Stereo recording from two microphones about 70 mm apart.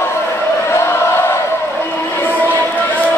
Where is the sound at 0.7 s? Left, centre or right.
Left.